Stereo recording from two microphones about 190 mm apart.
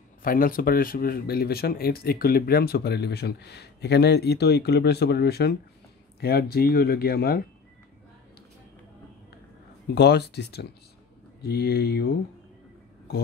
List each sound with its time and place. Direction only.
0.2 s speech: 50° left (ahead or behind)
9.9 s speech: 60° left (ahead or behind)